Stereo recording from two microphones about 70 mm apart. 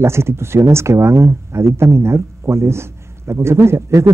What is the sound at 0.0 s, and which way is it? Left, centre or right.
A man's voice, right.